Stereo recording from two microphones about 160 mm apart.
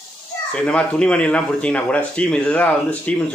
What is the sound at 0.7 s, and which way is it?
A man's voice, 5° left (ahead or behind).